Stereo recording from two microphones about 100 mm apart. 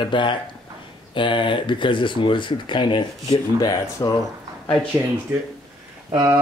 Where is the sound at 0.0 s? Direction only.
55° left (ahead or behind).